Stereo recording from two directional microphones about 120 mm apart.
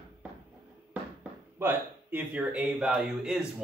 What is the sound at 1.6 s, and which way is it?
A man's voice, 15° right (ahead or behind).